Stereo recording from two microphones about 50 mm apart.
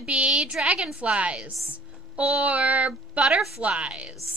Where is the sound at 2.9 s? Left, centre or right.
Centre.